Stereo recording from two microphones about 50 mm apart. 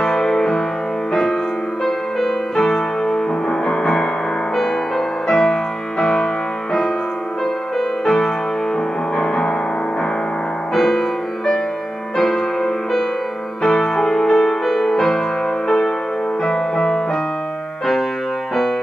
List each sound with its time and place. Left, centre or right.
0.0 s music: centre
1.9 s music: centre
8.0 s music: centre
10.7 s music: centre
16.4 s music: centre